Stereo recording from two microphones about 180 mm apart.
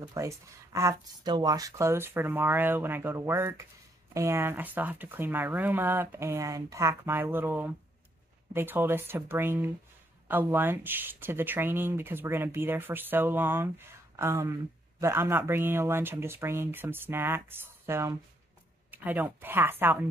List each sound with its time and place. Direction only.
0.0 s speech: 20° right (ahead or behind)